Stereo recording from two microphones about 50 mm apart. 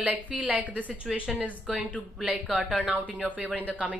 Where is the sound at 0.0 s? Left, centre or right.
Right.